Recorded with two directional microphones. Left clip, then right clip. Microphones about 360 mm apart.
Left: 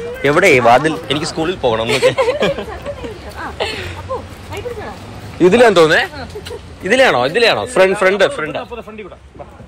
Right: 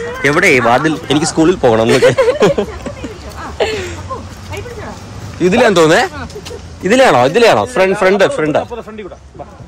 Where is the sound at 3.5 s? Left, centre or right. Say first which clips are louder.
Right 6 dB; right.